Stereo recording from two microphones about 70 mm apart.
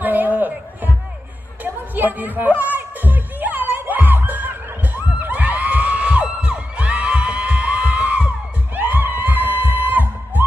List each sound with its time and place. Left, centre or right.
0.0 s a sound: right
1.6 s music: right
8.7 s crowd: right